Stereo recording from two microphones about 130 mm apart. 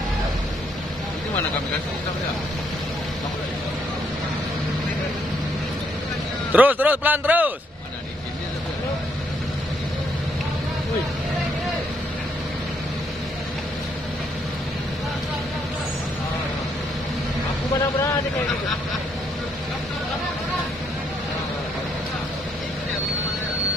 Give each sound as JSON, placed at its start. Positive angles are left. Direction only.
{"t": 6.5, "sound": "a man's voice", "side_deg": -15}